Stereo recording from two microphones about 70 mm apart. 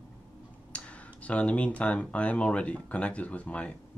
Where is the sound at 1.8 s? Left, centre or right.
Centre.